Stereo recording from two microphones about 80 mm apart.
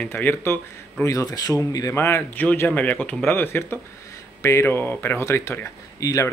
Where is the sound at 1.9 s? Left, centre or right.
Left.